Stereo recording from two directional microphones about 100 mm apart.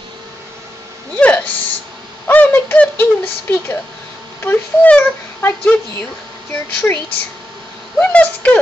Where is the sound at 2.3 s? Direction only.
20° left (ahead or behind).